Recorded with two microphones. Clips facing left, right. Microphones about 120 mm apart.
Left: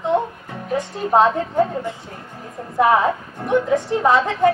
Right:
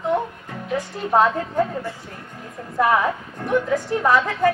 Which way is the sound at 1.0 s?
20° left (ahead or behind).